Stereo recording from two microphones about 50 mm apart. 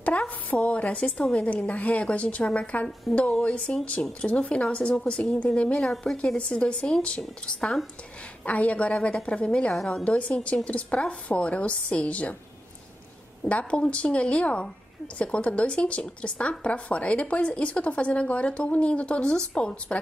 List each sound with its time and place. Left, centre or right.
0.1 s a sound: left
0.5 s speech: left
9.7 s a woman's voice: centre
10.0 s speech: left
13.4 s speech: left